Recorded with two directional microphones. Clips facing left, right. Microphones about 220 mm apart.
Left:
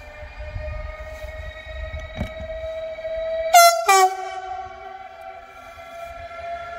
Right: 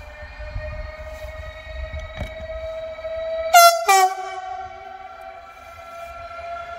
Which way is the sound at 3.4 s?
Centre (ahead or behind).